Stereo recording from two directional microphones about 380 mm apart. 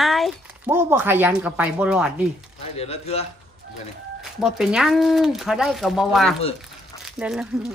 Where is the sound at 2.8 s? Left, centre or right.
Centre.